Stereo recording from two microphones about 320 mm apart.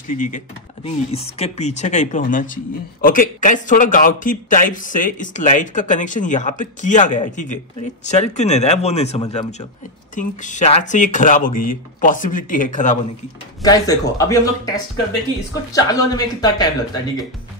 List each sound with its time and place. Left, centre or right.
0.1 s speech: left
13.6 s a man's voice: centre
15.7 s a man's voice: centre